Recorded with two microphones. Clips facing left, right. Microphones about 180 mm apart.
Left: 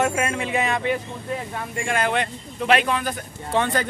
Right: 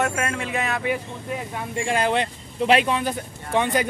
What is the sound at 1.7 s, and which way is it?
Speech, 30° right (ahead or behind).